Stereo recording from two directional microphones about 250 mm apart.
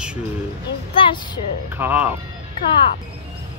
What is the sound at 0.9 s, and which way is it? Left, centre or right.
Speech, centre.